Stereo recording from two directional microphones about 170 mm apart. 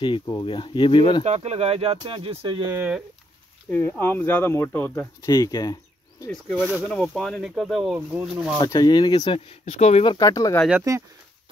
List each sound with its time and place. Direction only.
0.0 s speech: 25° left (ahead or behind)
1.2 s speech: 40° right (ahead or behind)
2.7 s speech: 10° right (ahead or behind)
3.7 s speech: 10° left (ahead or behind)
6.3 s speech: centre (ahead or behind)
8.6 s speech: 25° left (ahead or behind)
9.7 s speech: 40° left (ahead or behind)
10.1 s speech: 20° left (ahead or behind)
10.8 s speech: 20° right (ahead or behind)